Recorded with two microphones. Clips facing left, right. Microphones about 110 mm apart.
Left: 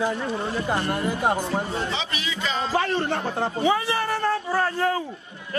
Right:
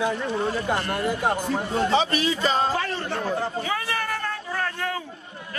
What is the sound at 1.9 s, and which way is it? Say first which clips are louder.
Music: right 8 dB; 45° right (ahead or behind).